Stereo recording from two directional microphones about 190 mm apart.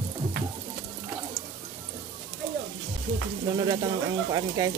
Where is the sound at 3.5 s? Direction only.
20° right (ahead or behind).